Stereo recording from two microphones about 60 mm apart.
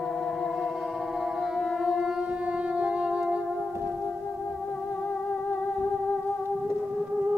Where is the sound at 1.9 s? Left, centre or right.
Centre.